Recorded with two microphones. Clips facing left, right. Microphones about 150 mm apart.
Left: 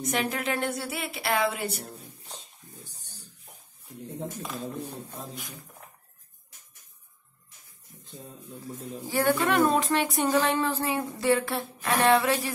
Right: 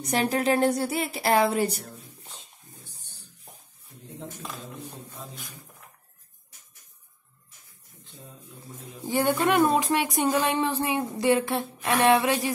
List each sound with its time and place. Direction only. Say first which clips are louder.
0.0 s speech: right 4 dB; 35° right (ahead or behind)
1.8 s a sound: left 1 dB; 40° left (ahead or behind)
9.0 s speech: right 1 dB; 20° right (ahead or behind)